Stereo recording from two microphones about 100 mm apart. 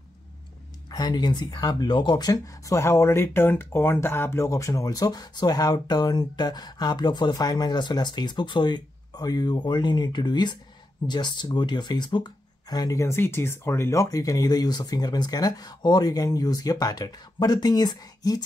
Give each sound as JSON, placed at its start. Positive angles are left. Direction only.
{"t": 0.8, "sound": "speech", "side_deg": 45}
{"t": 13.0, "sound": "speech", "side_deg": 25}